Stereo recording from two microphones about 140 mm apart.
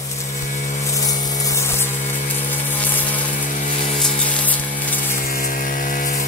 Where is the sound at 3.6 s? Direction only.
55° left (ahead or behind).